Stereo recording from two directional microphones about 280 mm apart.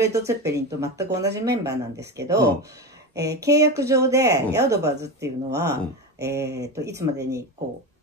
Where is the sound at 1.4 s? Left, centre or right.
Centre.